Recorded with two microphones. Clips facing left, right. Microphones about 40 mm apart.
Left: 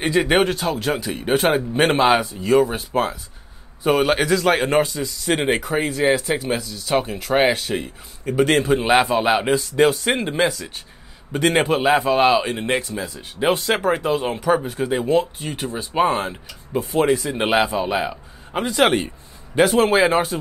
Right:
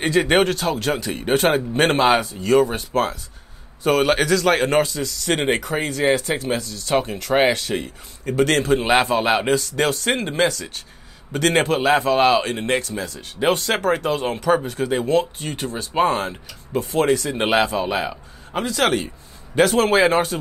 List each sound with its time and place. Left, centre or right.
0.0 s a man's voice: centre
6.0 s speech: centre
6.3 s a man's voice: centre
6.9 s a man's voice: centre
19.5 s a man's voice: centre